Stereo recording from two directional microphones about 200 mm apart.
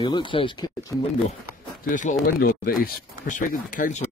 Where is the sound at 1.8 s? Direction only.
40° left (ahead or behind).